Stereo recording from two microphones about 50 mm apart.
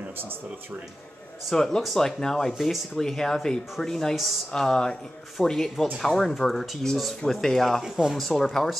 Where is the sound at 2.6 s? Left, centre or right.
Centre.